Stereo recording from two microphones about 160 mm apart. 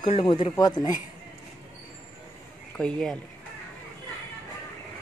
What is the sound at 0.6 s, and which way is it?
Speech, 25° left (ahead or behind).